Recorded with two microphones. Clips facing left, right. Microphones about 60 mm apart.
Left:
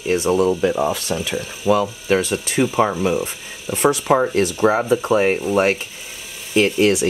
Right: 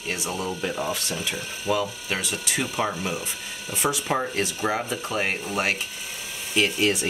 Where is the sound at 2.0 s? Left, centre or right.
Left.